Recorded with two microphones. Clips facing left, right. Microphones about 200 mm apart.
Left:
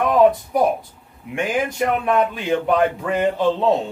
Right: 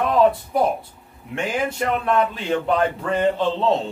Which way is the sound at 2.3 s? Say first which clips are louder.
Left 2 dB; 15° left (ahead or behind).